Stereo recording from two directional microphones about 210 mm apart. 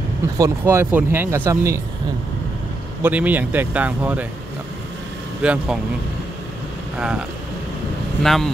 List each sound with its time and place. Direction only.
0.4 s speech: 10° right (ahead or behind)
3.0 s speech: 5° right (ahead or behind)
5.4 s speech: 5° right (ahead or behind)
7.0 s speech: 5° right (ahead or behind)